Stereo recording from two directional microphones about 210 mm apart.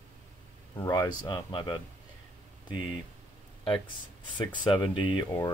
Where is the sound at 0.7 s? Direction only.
15° left (ahead or behind).